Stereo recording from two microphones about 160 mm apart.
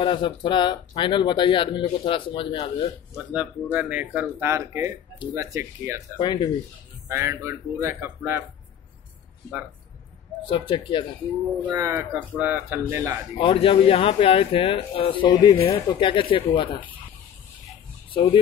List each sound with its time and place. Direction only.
0.0 s speech: 30° left (ahead or behind)
3.7 s speech: 10° right (ahead or behind)
6.1 s speech: 30° left (ahead or behind)
7.1 s speech: 15° right (ahead or behind)
10.4 s speech: 30° left (ahead or behind)
11.6 s speech: 20° right (ahead or behind)
12.4 s speech: 10° right (ahead or behind)
13.4 s speech: 35° left (ahead or behind)
18.1 s speech: 30° left (ahead or behind)